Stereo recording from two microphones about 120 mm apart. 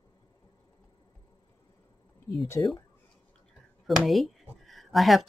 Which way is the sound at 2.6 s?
30° left (ahead or behind).